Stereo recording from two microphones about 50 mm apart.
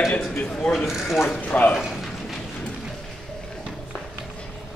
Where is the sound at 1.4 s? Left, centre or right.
Left.